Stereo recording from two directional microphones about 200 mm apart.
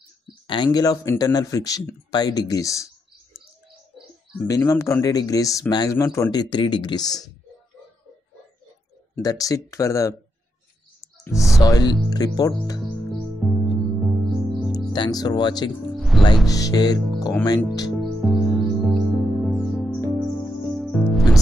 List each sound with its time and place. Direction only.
0.5 s speech: 20° left (ahead or behind)
4.5 s speech: 15° left (ahead or behind)
9.1 s speech: 15° left (ahead or behind)
11.3 s speech: centre (ahead or behind)
11.6 s speech: 20° left (ahead or behind)
12.8 s music: centre (ahead or behind)
14.9 s speech: 20° left (ahead or behind)
15.9 s music: centre (ahead or behind)
16.4 s speech: 15° left (ahead or behind)
18.0 s music: centre (ahead or behind)